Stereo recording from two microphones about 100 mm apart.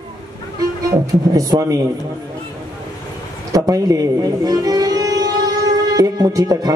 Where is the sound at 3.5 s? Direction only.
35° right (ahead or behind).